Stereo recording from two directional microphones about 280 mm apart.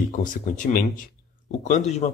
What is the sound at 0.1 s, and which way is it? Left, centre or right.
Speech, left.